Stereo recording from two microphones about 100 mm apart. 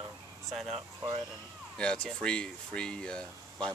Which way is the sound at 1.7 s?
10° left (ahead or behind).